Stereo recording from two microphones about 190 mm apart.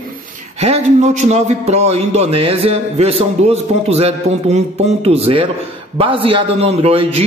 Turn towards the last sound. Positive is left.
turn(degrees=-30)  # may be behind; listen again after turning